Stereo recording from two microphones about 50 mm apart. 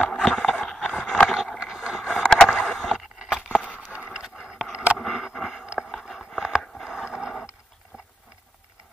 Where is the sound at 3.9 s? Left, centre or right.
Right.